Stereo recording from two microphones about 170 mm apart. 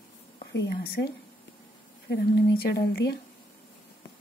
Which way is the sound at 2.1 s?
70° left (ahead or behind).